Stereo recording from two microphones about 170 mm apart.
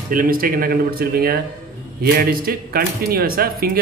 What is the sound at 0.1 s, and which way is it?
Speech, 55° right (ahead or behind).